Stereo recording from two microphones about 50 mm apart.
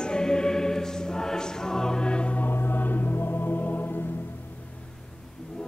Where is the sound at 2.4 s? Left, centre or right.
Left.